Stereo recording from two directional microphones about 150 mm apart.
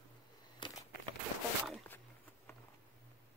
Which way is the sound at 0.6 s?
30° left (ahead or behind).